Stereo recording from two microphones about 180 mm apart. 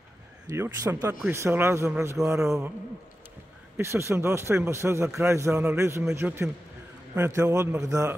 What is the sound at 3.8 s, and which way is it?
Speech, 15° right (ahead or behind).